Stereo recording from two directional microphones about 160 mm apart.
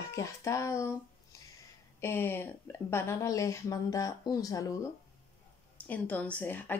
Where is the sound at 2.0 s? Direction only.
15° left (ahead or behind).